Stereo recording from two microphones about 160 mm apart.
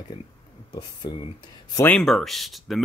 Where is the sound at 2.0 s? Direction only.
Centre (ahead or behind).